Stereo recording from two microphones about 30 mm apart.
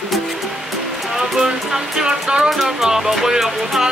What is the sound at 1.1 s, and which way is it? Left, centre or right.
Music, centre.